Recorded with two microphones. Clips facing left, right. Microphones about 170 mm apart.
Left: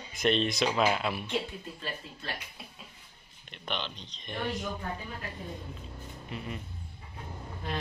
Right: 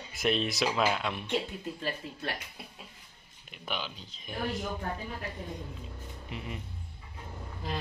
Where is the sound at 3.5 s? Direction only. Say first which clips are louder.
Left 1 dB; 5° right (ahead or behind).